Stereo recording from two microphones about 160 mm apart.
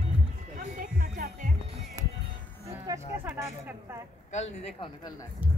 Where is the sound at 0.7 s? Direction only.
60° right (ahead or behind).